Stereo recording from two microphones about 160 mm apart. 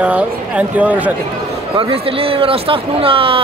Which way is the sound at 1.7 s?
35° right (ahead or behind).